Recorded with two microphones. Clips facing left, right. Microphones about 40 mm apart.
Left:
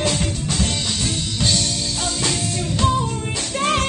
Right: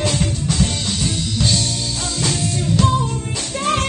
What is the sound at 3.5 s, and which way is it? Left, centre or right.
Music, left.